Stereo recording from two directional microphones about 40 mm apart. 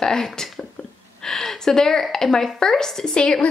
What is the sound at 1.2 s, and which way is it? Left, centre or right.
Speech, centre.